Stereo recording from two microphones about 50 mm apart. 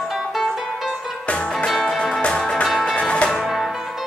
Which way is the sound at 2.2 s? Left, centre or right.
Centre.